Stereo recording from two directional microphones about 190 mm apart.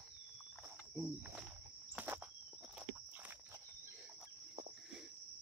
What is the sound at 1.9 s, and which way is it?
Insect, 10° right (ahead or behind).